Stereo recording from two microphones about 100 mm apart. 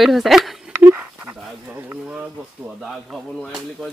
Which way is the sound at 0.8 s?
15° right (ahead or behind).